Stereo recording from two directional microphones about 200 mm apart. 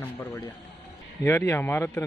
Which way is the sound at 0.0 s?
10° left (ahead or behind).